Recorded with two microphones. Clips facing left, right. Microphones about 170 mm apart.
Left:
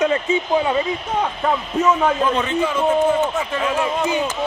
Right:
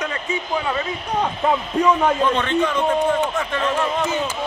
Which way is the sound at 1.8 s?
5° left (ahead or behind).